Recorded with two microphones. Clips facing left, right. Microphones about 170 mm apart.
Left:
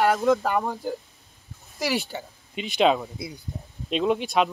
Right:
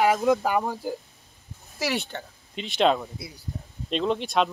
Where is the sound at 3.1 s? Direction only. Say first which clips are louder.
Left 5 dB; 20° left (ahead or behind).